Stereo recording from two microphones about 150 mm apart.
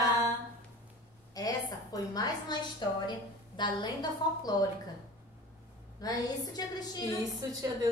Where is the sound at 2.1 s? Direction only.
25° left (ahead or behind).